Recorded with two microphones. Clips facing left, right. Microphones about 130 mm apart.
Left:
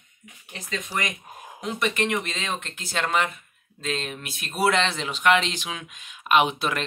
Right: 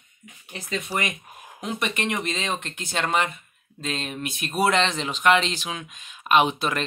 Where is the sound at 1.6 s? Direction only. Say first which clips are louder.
Left 2 dB; centre (ahead or behind).